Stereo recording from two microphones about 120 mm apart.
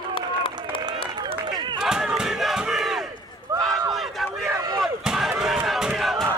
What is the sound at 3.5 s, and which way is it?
Run, 25° right (ahead or behind).